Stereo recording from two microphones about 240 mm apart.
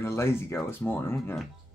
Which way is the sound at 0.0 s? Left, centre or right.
Centre.